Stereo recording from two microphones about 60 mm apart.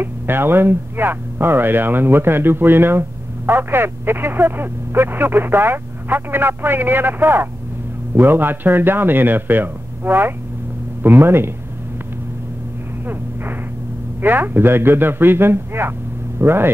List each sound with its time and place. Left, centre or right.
0.0 s speech: right
13.0 s a sound: right
14.2 s speech: right